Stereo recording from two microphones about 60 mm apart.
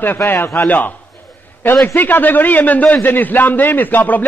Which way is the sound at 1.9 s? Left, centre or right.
Left.